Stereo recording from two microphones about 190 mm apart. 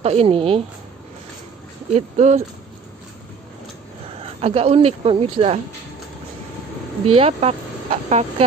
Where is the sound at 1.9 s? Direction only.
35° right (ahead or behind).